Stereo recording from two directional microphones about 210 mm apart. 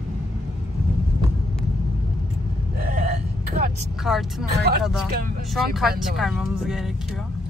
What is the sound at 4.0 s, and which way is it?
Speech, centre (ahead or behind).